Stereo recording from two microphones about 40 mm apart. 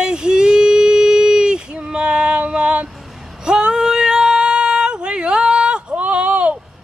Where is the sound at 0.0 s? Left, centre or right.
Centre.